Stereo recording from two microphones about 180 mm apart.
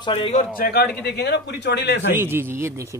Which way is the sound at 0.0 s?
30° left (ahead or behind).